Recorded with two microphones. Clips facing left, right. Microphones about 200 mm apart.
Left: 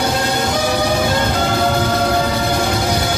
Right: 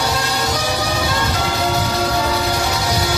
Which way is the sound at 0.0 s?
55° left (ahead or behind).